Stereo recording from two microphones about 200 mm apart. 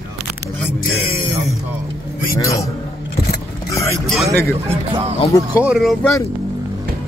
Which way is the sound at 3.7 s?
15° left (ahead or behind).